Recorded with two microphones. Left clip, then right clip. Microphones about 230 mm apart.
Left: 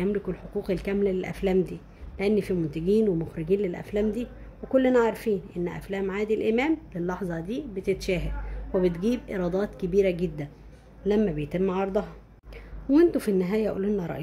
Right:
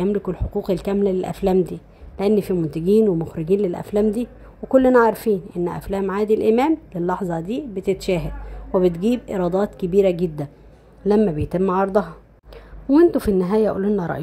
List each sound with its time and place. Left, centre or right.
0.0 s speech: centre